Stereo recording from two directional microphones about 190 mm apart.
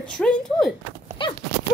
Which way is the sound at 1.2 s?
25° left (ahead or behind).